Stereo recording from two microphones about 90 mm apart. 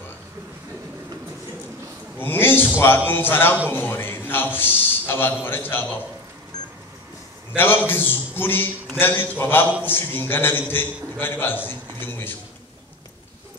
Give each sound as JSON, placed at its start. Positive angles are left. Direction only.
{"t": 2.1, "sound": "a sound", "side_deg": 25}
{"t": 3.1, "sound": "a man's voice", "side_deg": 25}
{"t": 7.5, "sound": "a man's voice", "side_deg": 25}